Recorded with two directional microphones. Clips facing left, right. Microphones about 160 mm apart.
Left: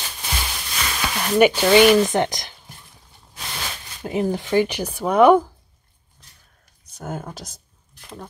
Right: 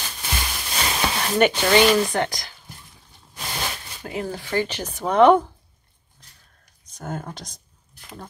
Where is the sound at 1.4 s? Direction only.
10° left (ahead or behind).